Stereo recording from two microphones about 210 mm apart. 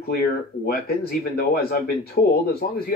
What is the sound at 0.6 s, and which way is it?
Speech, 45° left (ahead or behind).